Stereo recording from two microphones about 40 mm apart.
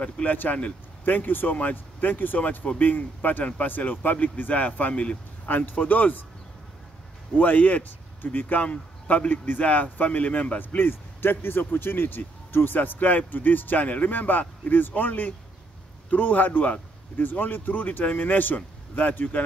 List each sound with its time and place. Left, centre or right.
0.0 s speech: left
5.5 s speech: left
7.3 s speech: left
8.6 s speech: left
9.3 s speech: left
10.8 s speech: left